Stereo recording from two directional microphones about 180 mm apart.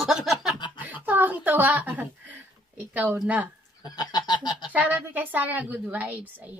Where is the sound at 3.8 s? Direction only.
20° left (ahead or behind).